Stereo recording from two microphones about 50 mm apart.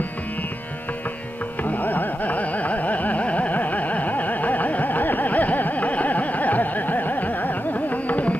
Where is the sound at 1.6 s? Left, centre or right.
Left.